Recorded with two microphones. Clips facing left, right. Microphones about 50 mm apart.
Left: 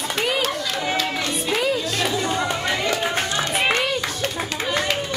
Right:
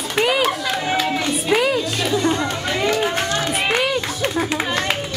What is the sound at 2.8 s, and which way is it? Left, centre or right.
Run, centre.